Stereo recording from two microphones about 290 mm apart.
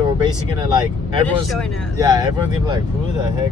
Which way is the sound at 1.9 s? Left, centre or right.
Centre.